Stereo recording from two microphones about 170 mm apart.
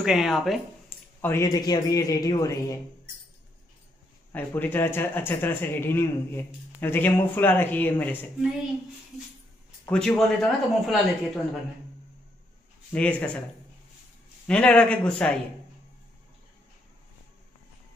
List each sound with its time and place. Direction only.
0.0 s speech: centre (ahead or behind)
1.2 s a man's voice: 15° left (ahead or behind)
4.3 s speech: 10° left (ahead or behind)
9.8 s speech: 5° left (ahead or behind)
12.9 s speech: 5° left (ahead or behind)
14.5 s speech: 5° left (ahead or behind)